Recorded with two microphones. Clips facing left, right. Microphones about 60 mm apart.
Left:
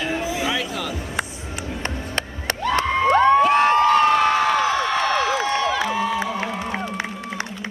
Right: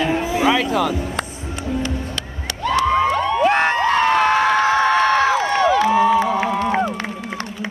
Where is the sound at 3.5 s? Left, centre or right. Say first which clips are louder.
Left 1 dB; right.